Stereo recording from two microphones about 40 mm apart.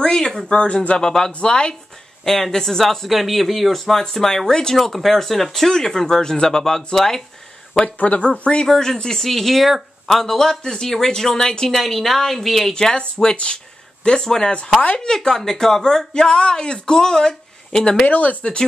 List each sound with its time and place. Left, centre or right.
0.2 s speech: centre
0.5 s speech: left
2.2 s a woman's voice: centre
4.7 s a woman's voice: centre
7.8 s speech: left
8.6 s speech: centre
11.7 s a woman's voice: centre
13.2 s speech: left
18.0 s speech: left
18.4 s speech: left